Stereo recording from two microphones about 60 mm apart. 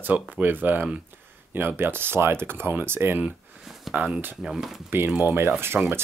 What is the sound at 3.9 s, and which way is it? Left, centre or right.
Speech, centre.